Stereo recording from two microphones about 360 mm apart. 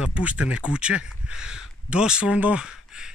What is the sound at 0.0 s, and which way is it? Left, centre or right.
Speech, centre.